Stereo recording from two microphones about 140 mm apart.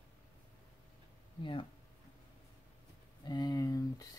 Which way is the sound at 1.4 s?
35° left (ahead or behind).